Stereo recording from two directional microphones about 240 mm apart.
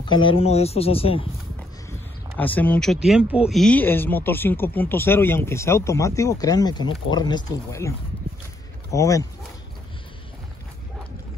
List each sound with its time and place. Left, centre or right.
0.1 s speech: left
1.9 s speech: centre
8.9 s speech: centre